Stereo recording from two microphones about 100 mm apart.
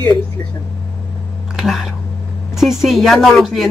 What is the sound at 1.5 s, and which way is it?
Speech, centre (ahead or behind).